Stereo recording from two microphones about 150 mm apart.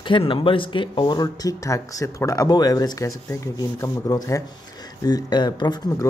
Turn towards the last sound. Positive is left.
turn(degrees=30)  # may be behind; listen again after turning